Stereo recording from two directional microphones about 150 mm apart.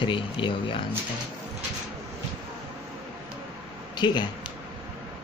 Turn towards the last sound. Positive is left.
turn(degrees=30)  # may be behind; listen again after turning